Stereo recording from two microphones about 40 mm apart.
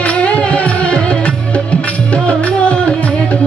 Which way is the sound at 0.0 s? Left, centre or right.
Left.